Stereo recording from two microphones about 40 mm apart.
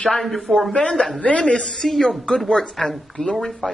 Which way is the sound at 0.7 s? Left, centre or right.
Left.